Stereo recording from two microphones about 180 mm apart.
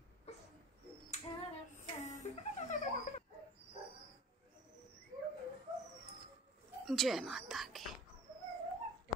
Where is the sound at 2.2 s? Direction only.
35° left (ahead or behind).